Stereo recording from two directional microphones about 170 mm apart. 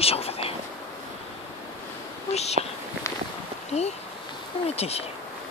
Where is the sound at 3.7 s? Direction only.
40° left (ahead or behind).